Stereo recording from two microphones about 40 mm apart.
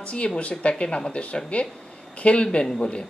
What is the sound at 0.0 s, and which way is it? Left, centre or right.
Speech, left.